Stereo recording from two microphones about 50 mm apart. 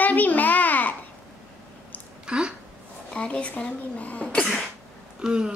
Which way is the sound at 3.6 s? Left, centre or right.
Left.